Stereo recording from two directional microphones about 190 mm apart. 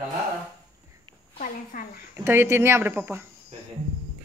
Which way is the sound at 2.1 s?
10° right (ahead or behind).